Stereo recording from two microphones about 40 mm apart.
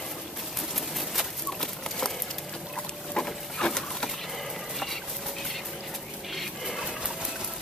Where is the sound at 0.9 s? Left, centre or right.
Centre.